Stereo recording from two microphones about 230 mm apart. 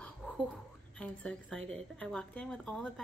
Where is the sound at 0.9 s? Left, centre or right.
Centre.